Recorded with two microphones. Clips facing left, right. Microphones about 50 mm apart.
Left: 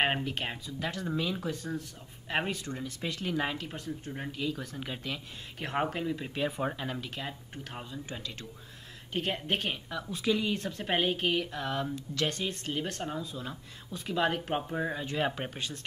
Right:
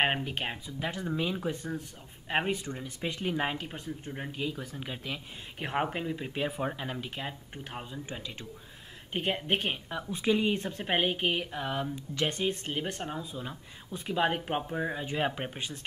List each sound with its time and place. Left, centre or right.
0.0 s speech: centre
4.6 s speech: centre
14.7 s speech: centre